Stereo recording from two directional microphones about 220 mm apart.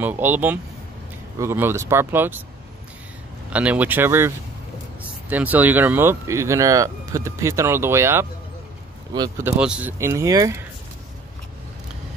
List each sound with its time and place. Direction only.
0.0 s speech: 10° right (ahead or behind)
3.5 s speech: 5° right (ahead or behind)
5.3 s speech: 5° right (ahead or behind)
9.6 s speech: 5° right (ahead or behind)